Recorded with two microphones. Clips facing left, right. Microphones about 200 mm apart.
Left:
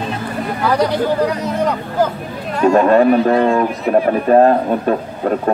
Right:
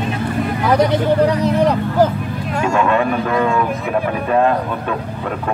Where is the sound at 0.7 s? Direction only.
20° right (ahead or behind).